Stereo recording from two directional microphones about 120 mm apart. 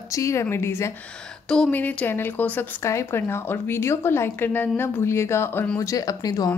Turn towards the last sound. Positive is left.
turn(degrees=30)  # may be behind; listen again after turning